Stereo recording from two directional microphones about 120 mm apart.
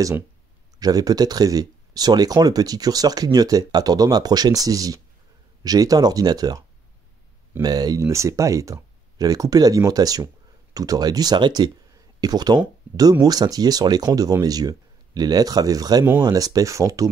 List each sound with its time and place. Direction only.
0.7 s speech: 30° right (ahead or behind)
7.6 s speech: 35° right (ahead or behind)